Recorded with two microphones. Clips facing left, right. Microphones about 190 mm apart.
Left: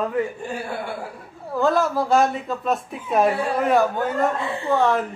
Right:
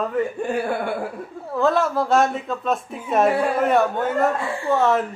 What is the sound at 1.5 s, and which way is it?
Speech, centre (ahead or behind).